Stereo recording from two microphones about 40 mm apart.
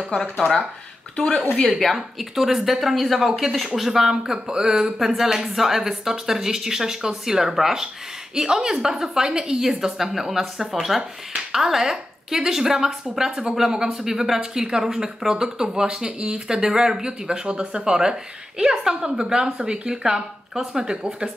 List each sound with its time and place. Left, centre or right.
1.8 s speech: centre